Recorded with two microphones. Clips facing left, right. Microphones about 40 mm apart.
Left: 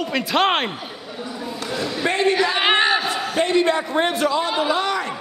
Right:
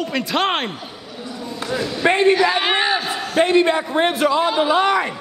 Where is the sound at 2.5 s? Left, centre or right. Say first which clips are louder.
Left 1 dB; centre.